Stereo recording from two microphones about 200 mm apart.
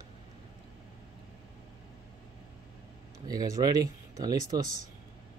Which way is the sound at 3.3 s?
20° right (ahead or behind).